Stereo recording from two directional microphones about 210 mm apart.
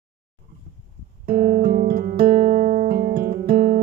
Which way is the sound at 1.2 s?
40° right (ahead or behind).